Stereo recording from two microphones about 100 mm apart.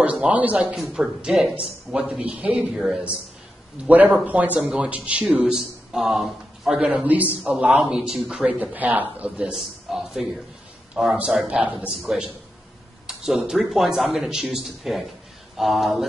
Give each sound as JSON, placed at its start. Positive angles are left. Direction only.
{"t": 0.0, "sound": "a man's voice", "side_deg": -15}
{"t": 0.7, "sound": "a man's voice", "side_deg": -5}
{"t": 6.9, "sound": "a man's voice", "side_deg": -15}
{"t": 8.7, "sound": "a man's voice", "side_deg": -15}